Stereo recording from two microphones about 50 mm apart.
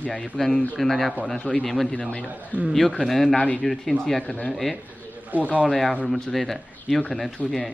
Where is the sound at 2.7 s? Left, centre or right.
Centre.